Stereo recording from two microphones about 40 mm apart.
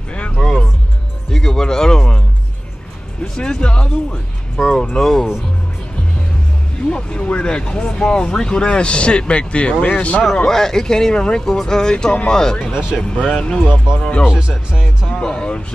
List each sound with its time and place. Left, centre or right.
0.4 s music: left
1.3 s speech: centre
4.6 s speech: centre
6.9 s speech: left
10.3 s speech: centre
14.2 s speech: centre
15.0 s speech: left